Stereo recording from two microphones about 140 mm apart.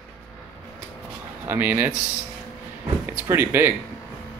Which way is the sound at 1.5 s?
15° right (ahead or behind).